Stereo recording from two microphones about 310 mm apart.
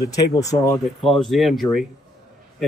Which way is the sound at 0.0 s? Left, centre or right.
Centre.